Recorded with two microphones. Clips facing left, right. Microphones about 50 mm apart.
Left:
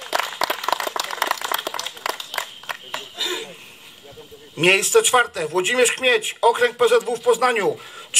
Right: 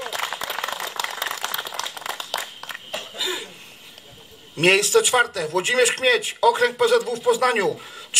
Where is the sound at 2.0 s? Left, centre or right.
Left.